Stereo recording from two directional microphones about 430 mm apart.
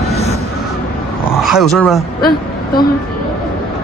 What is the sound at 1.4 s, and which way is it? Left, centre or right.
Speech, centre.